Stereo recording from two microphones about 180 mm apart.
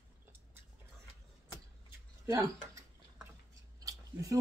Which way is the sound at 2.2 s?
15° right (ahead or behind).